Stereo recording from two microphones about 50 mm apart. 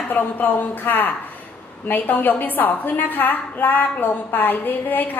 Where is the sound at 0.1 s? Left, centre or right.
Left.